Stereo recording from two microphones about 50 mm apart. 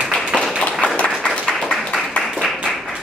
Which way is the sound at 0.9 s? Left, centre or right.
Left.